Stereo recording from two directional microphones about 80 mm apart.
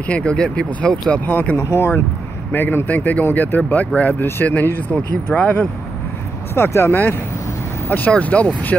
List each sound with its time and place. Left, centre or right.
0.0 s speech: centre
1.6 s speech: left
6.5 s speech: left
8.1 s speech: centre